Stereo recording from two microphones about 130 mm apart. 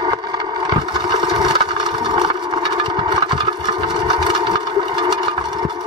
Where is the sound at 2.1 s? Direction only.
35° right (ahead or behind).